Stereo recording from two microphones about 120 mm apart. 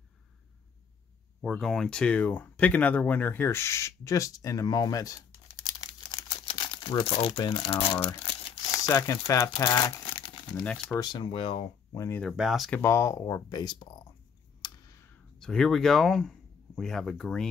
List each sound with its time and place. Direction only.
1.4 s speech: centre (ahead or behind); by 5.1 s 30° left (ahead or behind)
5.8 s crumpling: 45° left (ahead or behind)
7.1 s speech: 50° left (ahead or behind)
8.7 s speech: 30° left (ahead or behind)
10.6 s speech: 10° left (ahead or behind)
11.0 s speech: 40° left (ahead or behind)
12.2 s speech: centre (ahead or behind)
12.7 s speech: 20° left (ahead or behind); by 13.8 s 40° left (ahead or behind)
15.3 s speech: 5° left (ahead or behind)